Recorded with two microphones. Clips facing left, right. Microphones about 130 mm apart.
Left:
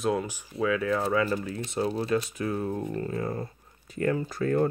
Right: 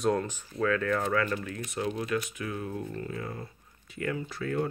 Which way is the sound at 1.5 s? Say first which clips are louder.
Left 4 dB; 30° left (ahead or behind).